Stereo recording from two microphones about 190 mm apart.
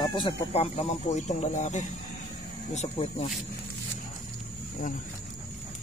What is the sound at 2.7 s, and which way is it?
Speech, 25° left (ahead or behind).